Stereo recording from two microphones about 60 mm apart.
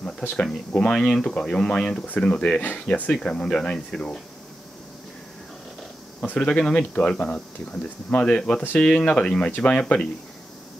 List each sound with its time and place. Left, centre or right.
0.4 s speech: centre
3.1 s speech: centre
6.2 s speech: centre